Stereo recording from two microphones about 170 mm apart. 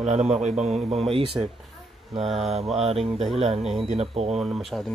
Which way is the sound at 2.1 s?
Centre (ahead or behind).